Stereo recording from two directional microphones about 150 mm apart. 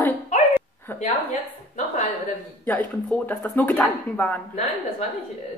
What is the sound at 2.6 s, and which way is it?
Speech, 10° left (ahead or behind).